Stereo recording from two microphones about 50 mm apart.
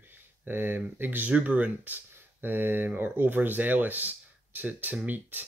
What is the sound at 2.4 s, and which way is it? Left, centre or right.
Speech, right.